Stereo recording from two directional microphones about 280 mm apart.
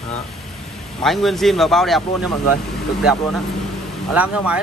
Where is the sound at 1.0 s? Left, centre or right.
Centre.